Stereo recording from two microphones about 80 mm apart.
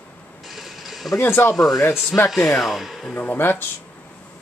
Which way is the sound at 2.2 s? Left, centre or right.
Left.